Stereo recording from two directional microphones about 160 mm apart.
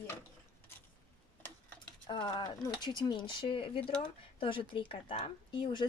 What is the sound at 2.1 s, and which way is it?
Speech, 30° left (ahead or behind).